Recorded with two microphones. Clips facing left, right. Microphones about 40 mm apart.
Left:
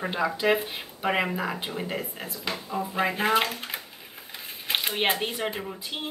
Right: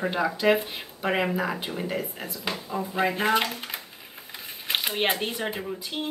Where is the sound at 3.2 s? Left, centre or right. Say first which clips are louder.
Left 1 dB; left.